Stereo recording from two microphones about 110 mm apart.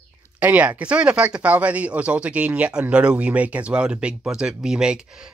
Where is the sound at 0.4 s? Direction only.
15° right (ahead or behind).